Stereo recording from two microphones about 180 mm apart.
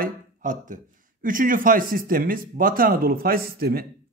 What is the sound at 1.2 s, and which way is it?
Speech, 50° right (ahead or behind).